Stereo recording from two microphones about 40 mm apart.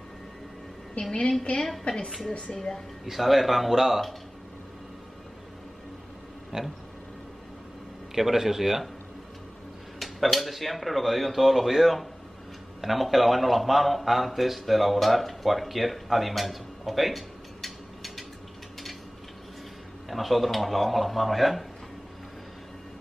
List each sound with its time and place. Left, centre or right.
1.0 s a woman's voice: left; by 2.8 s centre
3.1 s speech: centre
6.5 s speech: centre
8.1 s a man's voice: centre
9.9 s a man's voice: centre
20.1 s speech: centre